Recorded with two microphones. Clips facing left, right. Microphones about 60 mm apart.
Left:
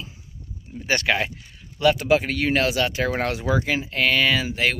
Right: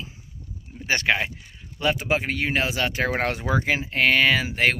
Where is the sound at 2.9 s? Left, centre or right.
Right.